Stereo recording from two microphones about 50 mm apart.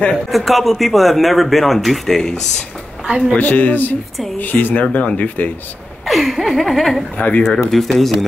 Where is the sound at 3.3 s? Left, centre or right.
Left.